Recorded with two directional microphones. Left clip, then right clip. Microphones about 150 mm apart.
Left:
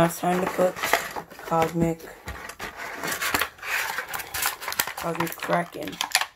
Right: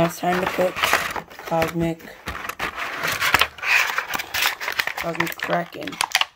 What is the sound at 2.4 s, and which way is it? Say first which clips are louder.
Vehicle: right 10 dB; 90° right.